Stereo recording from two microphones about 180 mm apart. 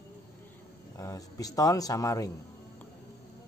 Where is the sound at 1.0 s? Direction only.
20° left (ahead or behind).